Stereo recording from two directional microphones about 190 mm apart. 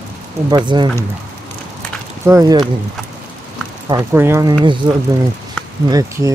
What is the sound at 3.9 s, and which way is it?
Speech, 15° right (ahead or behind).